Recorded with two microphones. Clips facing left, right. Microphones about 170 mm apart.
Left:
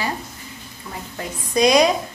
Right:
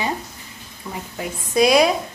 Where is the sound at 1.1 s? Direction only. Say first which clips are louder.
Right 1 dB; 5° right (ahead or behind).